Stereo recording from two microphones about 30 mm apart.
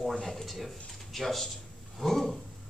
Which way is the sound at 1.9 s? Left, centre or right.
Centre.